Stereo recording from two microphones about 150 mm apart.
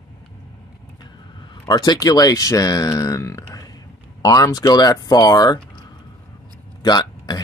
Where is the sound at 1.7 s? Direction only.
30° left (ahead or behind).